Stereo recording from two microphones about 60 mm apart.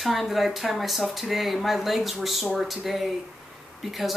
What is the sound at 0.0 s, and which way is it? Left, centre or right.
Speech, centre.